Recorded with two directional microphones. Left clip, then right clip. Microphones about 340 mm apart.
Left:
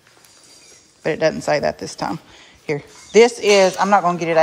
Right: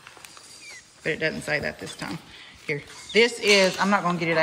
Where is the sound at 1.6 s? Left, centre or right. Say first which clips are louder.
Left 10 dB; left.